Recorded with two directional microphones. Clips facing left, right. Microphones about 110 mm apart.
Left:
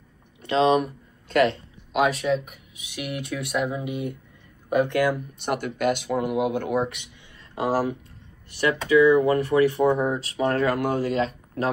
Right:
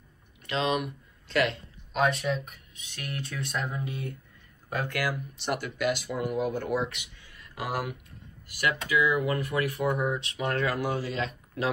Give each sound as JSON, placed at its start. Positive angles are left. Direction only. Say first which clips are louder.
{"t": 0.4, "sound": "speech", "louder": "left 8 dB", "side_deg": 30}
{"t": 2.0, "sound": "speech", "louder": "left 5 dB", "side_deg": 0}
{"t": 2.5, "sound": "speech", "louder": "left 9 dB", "side_deg": 15}
{"t": 5.4, "sound": "speech", "louder": "left 4 dB", "side_deg": 50}
{"t": 7.5, "sound": "speech", "louder": "left 9 dB", "side_deg": 30}